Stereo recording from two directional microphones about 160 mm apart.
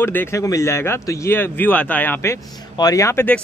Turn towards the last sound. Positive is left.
turn(degrees=15)  # may be behind; listen again after turning